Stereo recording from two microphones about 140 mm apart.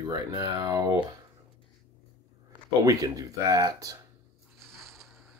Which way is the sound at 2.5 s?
25° right (ahead or behind).